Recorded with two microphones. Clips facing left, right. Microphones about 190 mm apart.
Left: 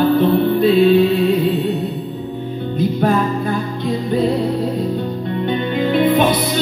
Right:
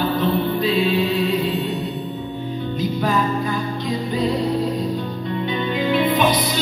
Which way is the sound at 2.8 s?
55° left (ahead or behind).